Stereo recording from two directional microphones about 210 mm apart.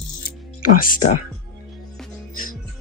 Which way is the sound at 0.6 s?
40° left (ahead or behind).